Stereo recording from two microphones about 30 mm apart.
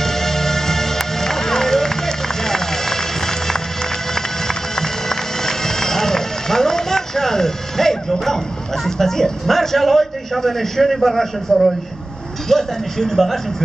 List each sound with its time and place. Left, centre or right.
0.0 s music: centre
8.8 s a man's voice: centre